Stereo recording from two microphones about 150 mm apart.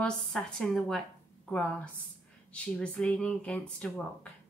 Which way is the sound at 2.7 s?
5° left (ahead or behind).